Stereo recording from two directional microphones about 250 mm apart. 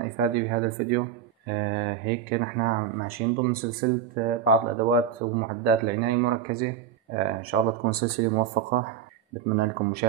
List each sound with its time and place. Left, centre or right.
0.0 s speech: right